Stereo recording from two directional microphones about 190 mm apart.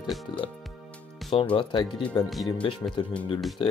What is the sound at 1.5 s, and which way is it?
Speech, 25° left (ahead or behind).